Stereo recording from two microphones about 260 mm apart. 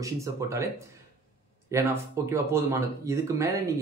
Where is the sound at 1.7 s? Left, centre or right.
Centre.